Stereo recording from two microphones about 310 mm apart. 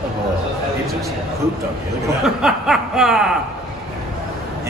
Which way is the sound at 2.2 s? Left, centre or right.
Centre.